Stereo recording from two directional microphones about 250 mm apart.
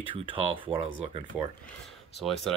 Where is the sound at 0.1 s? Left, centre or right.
Right.